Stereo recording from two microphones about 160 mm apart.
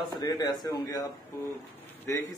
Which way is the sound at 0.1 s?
20° left (ahead or behind).